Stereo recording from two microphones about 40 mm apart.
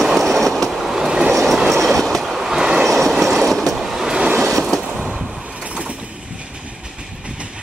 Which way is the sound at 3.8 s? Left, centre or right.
Centre.